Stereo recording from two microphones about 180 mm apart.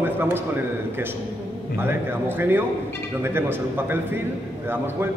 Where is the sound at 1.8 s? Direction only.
10° right (ahead or behind).